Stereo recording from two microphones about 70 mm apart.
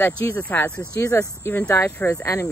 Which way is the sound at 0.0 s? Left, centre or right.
Left.